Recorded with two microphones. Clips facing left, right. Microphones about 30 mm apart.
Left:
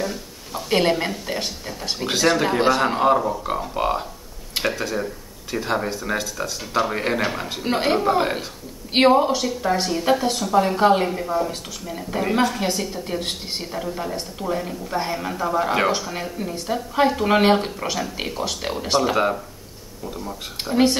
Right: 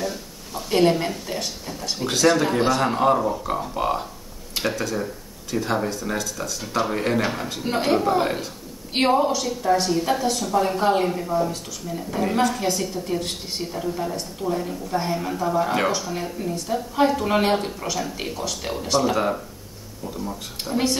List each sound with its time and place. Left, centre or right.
0.0 s a woman's voice: centre